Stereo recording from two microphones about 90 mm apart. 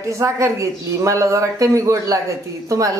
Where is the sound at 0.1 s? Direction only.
35° right (ahead or behind).